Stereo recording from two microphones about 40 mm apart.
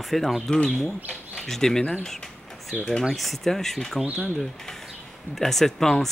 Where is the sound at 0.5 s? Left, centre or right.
Centre.